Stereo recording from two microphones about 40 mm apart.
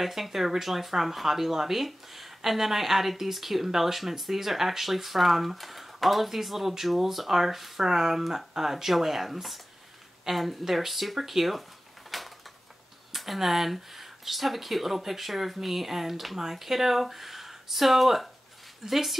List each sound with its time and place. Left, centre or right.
0.0 s speech: centre
12.1 s a sound: centre
13.1 s speech: centre